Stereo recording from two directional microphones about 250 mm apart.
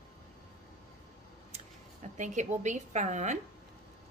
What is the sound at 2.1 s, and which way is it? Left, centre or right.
A woman's voice, right.